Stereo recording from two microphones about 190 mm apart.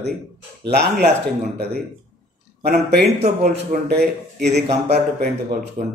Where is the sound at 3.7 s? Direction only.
40° right (ahead or behind).